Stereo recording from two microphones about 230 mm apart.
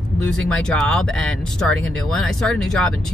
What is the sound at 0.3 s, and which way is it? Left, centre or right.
Speech, centre.